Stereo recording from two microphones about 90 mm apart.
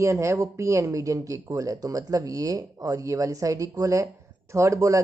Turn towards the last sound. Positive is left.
turn(degrees=-35)  # may be behind; listen again after turning